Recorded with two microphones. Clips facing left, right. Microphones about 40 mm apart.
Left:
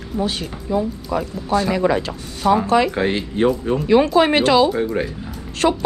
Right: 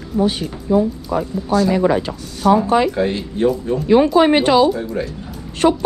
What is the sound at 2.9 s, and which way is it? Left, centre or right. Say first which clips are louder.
Speech: right 1 dB; left.